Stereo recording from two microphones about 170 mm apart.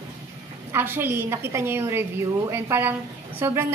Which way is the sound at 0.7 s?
15° right (ahead or behind).